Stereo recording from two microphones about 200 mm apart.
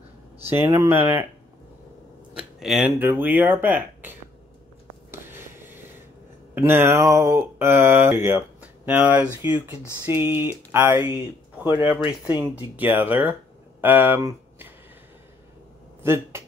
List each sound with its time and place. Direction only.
0.5 s speech: 15° right (ahead or behind)
2.3 s speech: 5° right (ahead or behind)
5.1 s a sound: 10° right (ahead or behind)
6.5 s speech: 10° right (ahead or behind)
16.0 s speech: 10° right (ahead or behind)